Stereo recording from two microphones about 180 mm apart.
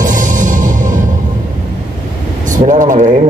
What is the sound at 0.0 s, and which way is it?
Music, 45° right (ahead or behind).